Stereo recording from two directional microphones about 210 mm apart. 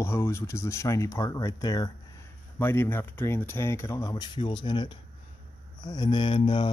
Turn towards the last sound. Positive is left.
turn(degrees=25)  # may be behind; listen again after turning